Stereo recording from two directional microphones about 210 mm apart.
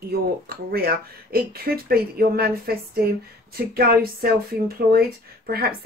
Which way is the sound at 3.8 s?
45° right (ahead or behind).